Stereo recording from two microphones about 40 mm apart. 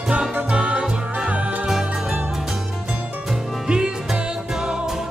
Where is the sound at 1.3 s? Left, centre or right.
Right.